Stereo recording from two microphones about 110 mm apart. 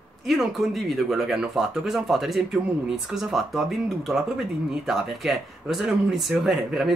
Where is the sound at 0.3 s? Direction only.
Centre (ahead or behind).